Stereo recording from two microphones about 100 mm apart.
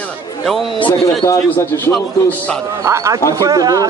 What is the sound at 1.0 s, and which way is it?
Speech, 30° left (ahead or behind).